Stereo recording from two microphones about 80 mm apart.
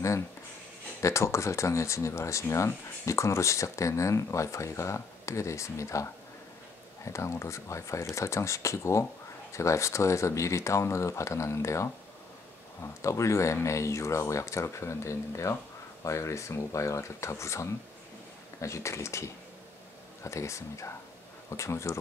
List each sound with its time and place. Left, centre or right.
1.0 s speech: left
7.1 s speech: left